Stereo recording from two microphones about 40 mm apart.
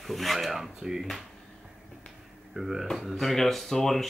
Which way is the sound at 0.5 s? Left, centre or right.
Centre.